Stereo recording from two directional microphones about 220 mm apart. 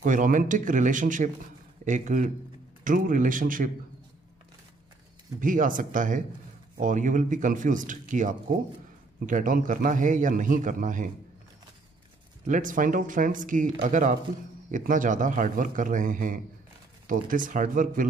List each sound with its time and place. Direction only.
0.0 s a man's voice: 35° right (ahead or behind)
5.4 s a man's voice: 35° right (ahead or behind)
12.4 s a man's voice: 35° right (ahead or behind)